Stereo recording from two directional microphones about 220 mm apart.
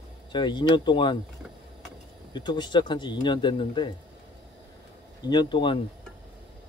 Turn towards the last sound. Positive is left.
turn(degrees=20)  # may be behind; listen again after turning